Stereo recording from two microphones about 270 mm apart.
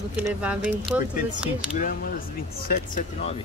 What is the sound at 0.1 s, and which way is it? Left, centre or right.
Speech, centre.